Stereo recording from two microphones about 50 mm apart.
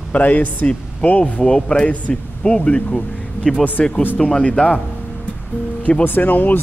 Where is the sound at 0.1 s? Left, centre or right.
Left.